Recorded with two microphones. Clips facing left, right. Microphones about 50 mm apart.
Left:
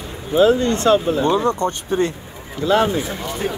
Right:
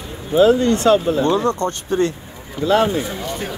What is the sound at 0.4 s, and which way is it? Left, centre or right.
Speech, left.